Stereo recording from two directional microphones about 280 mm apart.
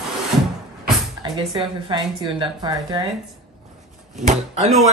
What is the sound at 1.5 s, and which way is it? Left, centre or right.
A woman's voice, centre.